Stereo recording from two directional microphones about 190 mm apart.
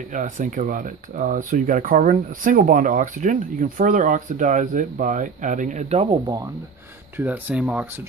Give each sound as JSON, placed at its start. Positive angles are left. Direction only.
{"t": 0.1, "sound": "speech", "side_deg": -40}
{"t": 7.2, "sound": "speech", "side_deg": -10}